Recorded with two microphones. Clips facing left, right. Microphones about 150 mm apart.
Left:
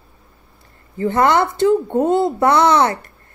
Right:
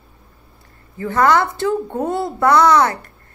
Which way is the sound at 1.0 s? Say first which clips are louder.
Left 1 dB; 25° left (ahead or behind).